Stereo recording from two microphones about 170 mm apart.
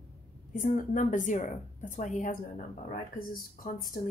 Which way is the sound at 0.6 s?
55° left (ahead or behind).